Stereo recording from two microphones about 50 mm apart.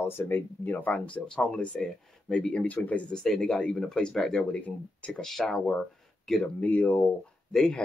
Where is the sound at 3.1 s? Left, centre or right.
Centre.